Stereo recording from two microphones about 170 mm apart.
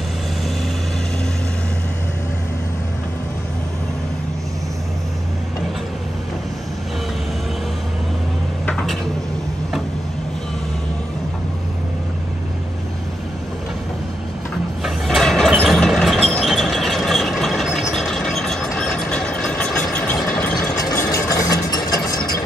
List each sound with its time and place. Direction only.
8.6 s a sound: 5° left (ahead or behind)
14.8 s a sound: centre (ahead or behind)
15.5 s vehicle: centre (ahead or behind)
17.9 s train: centre (ahead or behind)
18.8 s vehicle: 5° left (ahead or behind)
20.7 s vehicle: 20° left (ahead or behind)